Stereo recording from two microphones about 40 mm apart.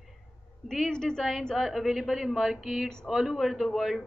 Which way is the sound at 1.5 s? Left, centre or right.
Centre.